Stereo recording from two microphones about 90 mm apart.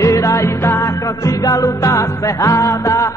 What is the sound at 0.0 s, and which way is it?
Music, 35° left (ahead or behind).